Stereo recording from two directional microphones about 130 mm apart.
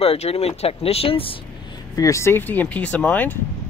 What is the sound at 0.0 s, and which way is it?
Speech, 50° left (ahead or behind).